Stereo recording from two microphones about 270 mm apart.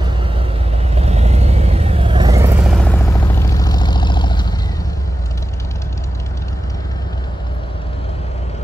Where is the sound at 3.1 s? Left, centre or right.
Centre.